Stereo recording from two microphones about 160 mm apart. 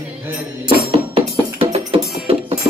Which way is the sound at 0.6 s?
35° right (ahead or behind).